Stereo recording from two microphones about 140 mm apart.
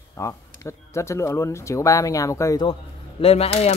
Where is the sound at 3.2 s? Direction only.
45° left (ahead or behind).